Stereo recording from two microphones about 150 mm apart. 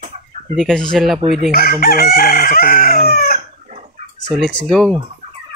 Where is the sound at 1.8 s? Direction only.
75° left (ahead or behind).